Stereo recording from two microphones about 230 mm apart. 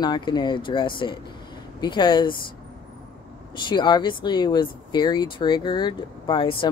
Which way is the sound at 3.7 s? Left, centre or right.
Centre.